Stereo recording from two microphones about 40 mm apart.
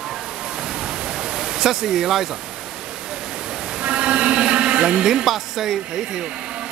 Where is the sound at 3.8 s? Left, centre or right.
Right.